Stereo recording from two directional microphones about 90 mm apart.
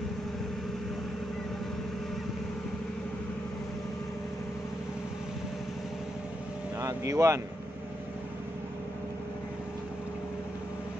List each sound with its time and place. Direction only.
6.8 s speech: 35° right (ahead or behind)